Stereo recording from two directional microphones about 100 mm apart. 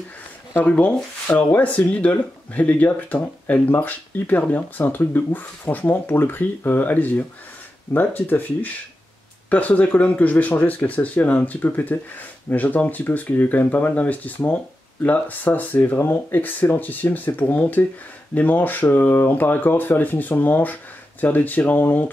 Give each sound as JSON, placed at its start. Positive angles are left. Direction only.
{"t": 0.6, "sound": "speech", "side_deg": 15}